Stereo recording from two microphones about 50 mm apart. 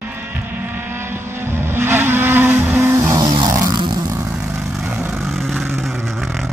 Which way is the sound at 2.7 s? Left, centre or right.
Right.